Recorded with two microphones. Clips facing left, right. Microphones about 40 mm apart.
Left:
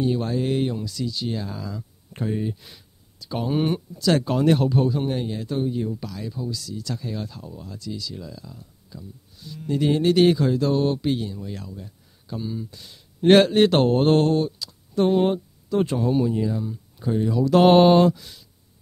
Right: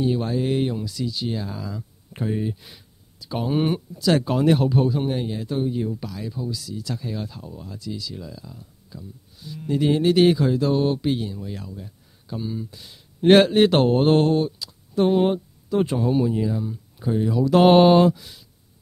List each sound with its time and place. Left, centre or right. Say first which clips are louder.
0.0 s speech: right 1 dB; centre